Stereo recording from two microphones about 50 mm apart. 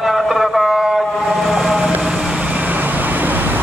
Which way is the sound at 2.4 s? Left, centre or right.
Right.